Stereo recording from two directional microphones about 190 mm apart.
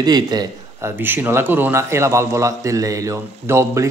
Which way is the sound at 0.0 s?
20° right (ahead or behind).